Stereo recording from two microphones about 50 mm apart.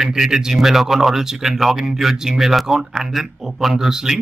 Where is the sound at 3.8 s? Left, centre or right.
Centre.